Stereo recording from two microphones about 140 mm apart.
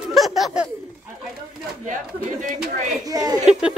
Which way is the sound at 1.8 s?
65° right (ahead or behind).